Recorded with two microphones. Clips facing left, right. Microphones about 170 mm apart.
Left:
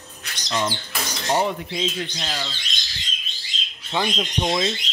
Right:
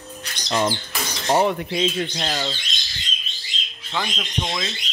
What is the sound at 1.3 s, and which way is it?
Speech, 60° right (ahead or behind).